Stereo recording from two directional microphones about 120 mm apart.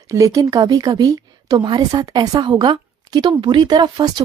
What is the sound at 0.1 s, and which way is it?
Speech, 25° right (ahead or behind).